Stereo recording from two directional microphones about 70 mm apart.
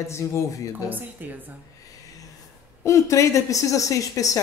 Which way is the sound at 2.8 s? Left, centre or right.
Left.